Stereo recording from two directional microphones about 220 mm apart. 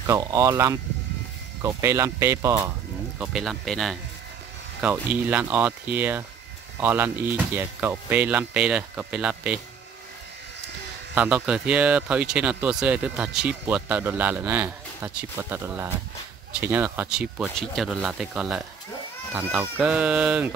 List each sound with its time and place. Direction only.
0.0 s speech: 15° right (ahead or behind)
3.2 s speech: centre (ahead or behind)
11.1 s speech: 5° right (ahead or behind)